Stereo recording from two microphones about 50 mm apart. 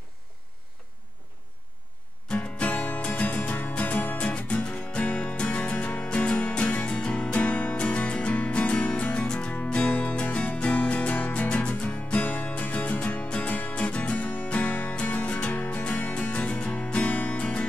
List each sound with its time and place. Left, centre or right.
2.2 s music: left
4.2 s music: left